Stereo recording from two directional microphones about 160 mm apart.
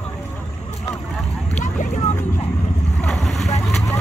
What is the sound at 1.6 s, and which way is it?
Vehicle, 55° left (ahead or behind).